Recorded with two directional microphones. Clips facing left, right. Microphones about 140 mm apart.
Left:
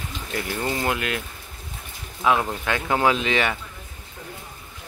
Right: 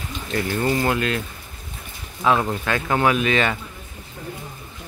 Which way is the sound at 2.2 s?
15° left (ahead or behind).